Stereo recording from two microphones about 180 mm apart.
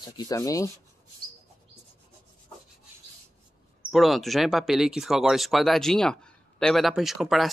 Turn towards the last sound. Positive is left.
turn(degrees=0)  # may be behind; listen again after turning